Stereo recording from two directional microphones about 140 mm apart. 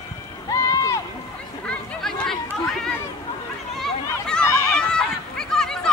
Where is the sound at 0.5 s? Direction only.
20° left (ahead or behind).